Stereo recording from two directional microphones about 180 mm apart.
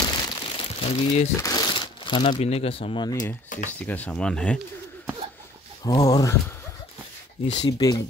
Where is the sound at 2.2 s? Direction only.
35° left (ahead or behind).